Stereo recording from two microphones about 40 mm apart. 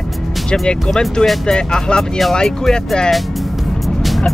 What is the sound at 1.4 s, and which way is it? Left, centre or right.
Speech, left.